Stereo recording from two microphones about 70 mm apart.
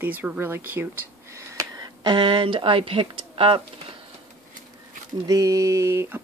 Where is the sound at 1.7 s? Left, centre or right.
Right.